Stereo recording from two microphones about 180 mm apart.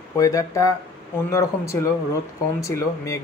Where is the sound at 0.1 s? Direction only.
20° left (ahead or behind).